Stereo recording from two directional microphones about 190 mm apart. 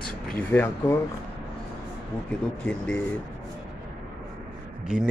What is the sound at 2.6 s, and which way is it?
Speech, 5° left (ahead or behind).